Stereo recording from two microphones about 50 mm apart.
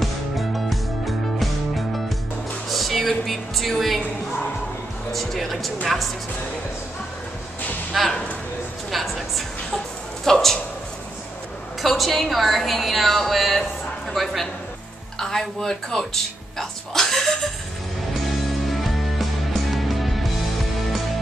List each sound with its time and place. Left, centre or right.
0.0 s music: centre
2.7 s speech: centre
5.1 s a woman's voice: centre
7.9 s a sound: centre
11.8 s a woman's voice: centre
16.5 s a sound: centre
18.7 s music: centre